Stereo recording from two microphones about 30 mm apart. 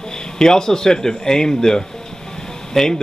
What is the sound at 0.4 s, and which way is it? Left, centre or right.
Speech, left.